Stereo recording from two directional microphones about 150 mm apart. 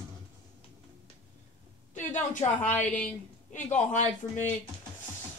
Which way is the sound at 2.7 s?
10° left (ahead or behind).